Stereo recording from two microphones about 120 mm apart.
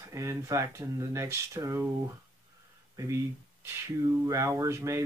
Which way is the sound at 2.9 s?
25° right (ahead or behind).